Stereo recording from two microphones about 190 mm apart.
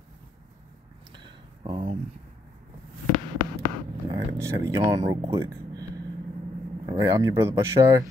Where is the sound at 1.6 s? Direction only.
25° right (ahead or behind).